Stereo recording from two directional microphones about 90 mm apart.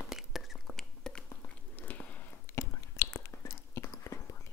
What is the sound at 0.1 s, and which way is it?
Whispering, 5° right (ahead or behind).